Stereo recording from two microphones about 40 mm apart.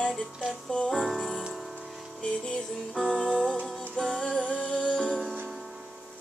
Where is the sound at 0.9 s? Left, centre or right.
Centre.